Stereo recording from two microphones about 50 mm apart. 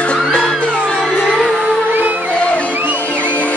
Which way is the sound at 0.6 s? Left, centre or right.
Centre.